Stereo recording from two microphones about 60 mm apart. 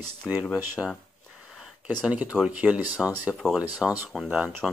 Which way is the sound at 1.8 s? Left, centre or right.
Right.